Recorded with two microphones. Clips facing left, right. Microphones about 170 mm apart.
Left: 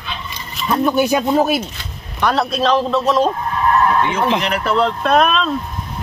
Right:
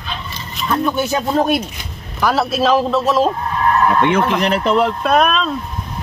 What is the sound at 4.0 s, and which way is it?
Speech, 60° right (ahead or behind).